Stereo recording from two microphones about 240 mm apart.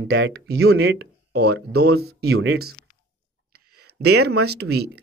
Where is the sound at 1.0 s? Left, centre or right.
Right.